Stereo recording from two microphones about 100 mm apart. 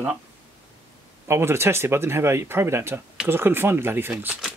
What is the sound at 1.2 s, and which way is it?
Speech, 25° right (ahead or behind).